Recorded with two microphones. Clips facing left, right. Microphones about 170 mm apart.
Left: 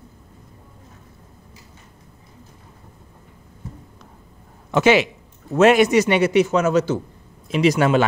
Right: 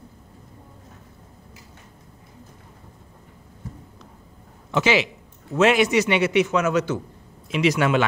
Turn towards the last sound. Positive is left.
turn(degrees=40)  # may be behind; listen again after turning